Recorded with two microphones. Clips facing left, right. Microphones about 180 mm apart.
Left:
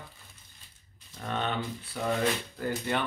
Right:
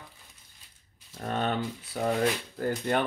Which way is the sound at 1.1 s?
45° right (ahead or behind).